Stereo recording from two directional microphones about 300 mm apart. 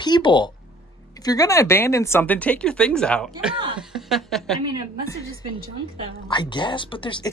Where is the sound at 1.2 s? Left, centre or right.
Centre.